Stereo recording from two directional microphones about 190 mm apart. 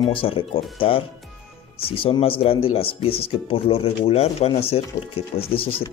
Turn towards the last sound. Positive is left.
turn(degrees=30)  # may be behind; listen again after turning